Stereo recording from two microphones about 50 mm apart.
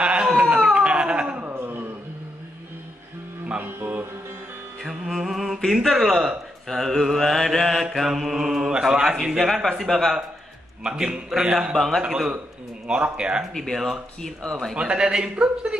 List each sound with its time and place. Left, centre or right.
0.0 s cat: right
1.5 s a sound: right
3.4 s music: right
4.8 s music: centre
5.7 s a man's voice: centre
10.8 s a man's voice: centre
11.7 s speech: centre
12.8 s speech: right
13.5 s speech: centre
14.8 s a man's voice: centre